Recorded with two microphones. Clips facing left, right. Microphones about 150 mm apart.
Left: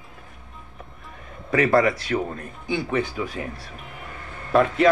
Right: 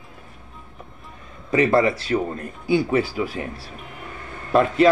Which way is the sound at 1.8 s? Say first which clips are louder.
Right 1 dB; 25° right (ahead or behind).